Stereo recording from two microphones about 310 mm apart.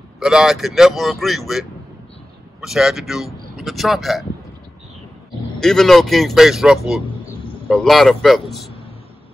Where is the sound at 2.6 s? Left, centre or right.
Centre.